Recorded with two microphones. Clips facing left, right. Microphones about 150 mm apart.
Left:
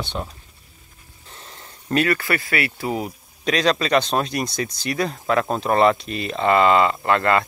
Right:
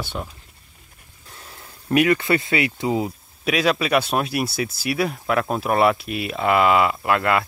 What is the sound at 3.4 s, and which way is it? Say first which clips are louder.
Speech: even; 5° right (ahead or behind).